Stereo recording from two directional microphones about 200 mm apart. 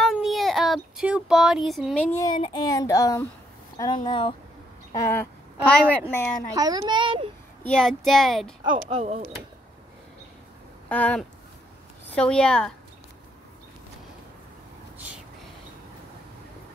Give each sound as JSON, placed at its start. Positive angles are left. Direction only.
{"t": 0.0, "sound": "child singing", "side_deg": 0}
{"t": 2.3, "sound": "speech", "side_deg": 20}
{"t": 4.9, "sound": "a woman's voice", "side_deg": 15}
{"t": 6.5, "sound": "a child's voice", "side_deg": -20}
{"t": 7.6, "sound": "speech", "side_deg": 5}
{"t": 8.7, "sound": "speech", "side_deg": -35}
{"t": 10.9, "sound": "speech", "side_deg": 5}